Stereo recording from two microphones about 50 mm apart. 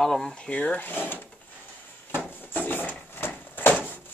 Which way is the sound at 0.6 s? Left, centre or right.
Left.